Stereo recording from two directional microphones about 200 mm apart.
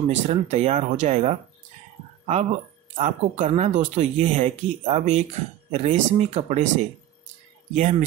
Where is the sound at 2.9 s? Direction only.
35° right (ahead or behind).